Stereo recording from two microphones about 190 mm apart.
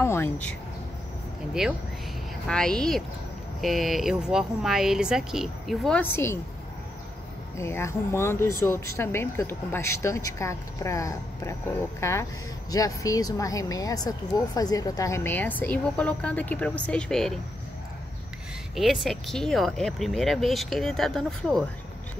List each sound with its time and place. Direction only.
0.0 s speech: 10° left (ahead or behind)
1.6 s speech: centre (ahead or behind)
7.5 s speech: 15° left (ahead or behind)
18.8 s speech: centre (ahead or behind)